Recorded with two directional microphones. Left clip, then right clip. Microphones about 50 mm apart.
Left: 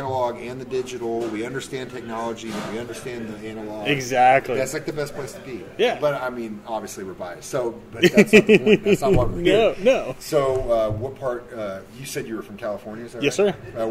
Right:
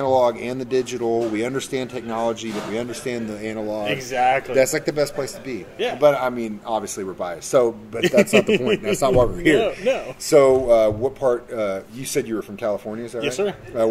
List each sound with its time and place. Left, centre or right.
0.0 s a man's voice: right
3.8 s speech: left
4.6 s a man's voice: right
8.0 s speech: left
10.3 s a man's voice: right
13.2 s speech: left